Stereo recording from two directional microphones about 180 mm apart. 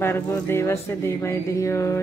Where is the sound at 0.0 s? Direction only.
15° left (ahead or behind).